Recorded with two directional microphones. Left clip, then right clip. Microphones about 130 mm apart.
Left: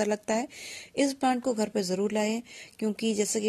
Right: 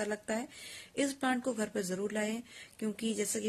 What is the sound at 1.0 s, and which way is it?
Speech, 40° left (ahead or behind).